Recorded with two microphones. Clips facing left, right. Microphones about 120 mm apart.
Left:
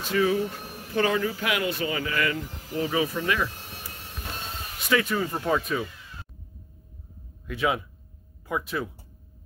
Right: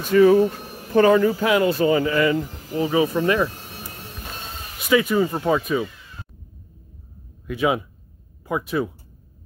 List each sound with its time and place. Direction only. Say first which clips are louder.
0.0 s speech: right 10 dB; 45° right (ahead or behind); by 3.4 s 30° right (ahead or behind)
4.7 s speech: right 7 dB; 10° right (ahead or behind)
7.4 s speech: right 5 dB; 10° right (ahead or behind)